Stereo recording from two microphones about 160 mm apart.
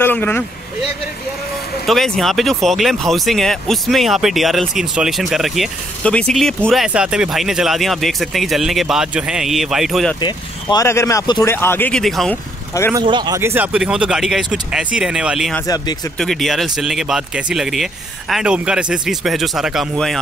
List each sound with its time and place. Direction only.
0.0 s speech: 10° left (ahead or behind)
1.9 s speech: centre (ahead or behind)
10.2 s speech: 25° left (ahead or behind)
12.0 s speech: centre (ahead or behind)
12.9 s speech: 30° right (ahead or behind); by 15.5 s 5° right (ahead or behind)
15.6 s speech: 25° left (ahead or behind)
16.2 s speech: centre (ahead or behind)